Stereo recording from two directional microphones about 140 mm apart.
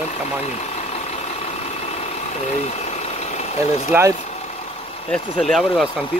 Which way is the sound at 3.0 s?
50° left (ahead or behind).